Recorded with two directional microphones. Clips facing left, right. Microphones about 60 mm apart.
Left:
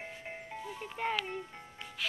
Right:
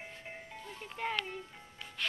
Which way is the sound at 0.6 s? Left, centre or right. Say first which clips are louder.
Left 3 dB; centre.